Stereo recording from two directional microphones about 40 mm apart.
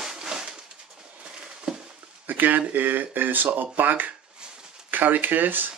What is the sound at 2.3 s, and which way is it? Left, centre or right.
Speech, right.